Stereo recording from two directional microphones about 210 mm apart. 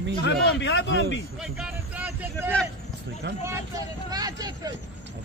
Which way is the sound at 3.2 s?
55° right (ahead or behind).